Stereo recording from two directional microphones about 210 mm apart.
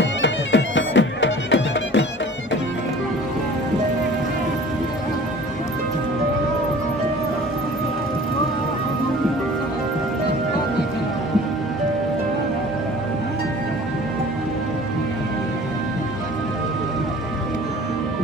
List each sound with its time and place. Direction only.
0.0 s music: 60° left (ahead or behind)